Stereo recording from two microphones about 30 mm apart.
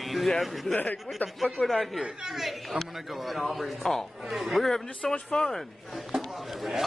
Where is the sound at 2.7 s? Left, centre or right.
Right.